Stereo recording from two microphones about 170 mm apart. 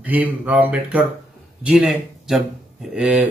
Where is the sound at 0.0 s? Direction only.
10° right (ahead or behind).